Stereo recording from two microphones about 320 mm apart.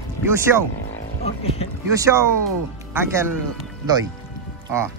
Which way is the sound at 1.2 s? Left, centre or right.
Centre.